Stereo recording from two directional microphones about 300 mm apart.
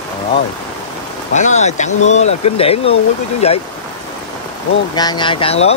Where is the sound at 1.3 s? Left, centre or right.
Left.